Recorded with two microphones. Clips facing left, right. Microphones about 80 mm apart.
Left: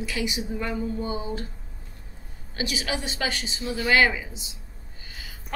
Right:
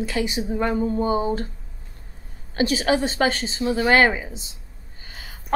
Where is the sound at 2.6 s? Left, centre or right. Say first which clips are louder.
Right 9 dB; right.